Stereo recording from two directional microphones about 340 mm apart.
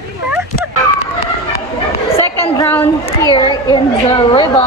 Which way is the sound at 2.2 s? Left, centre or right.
Centre.